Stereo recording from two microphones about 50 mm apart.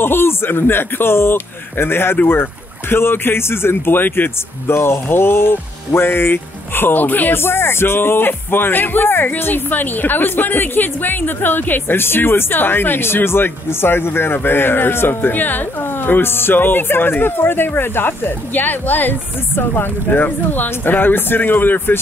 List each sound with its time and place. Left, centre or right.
0.0 s speech: left
4.6 s speech: left
7.3 s speech: left